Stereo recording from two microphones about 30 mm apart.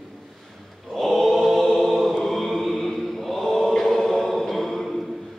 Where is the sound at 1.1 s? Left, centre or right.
Centre.